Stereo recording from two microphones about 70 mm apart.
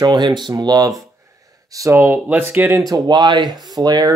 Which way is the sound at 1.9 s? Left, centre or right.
Right.